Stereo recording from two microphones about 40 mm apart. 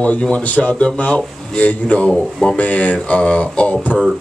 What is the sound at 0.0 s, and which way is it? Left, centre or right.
Speech, left.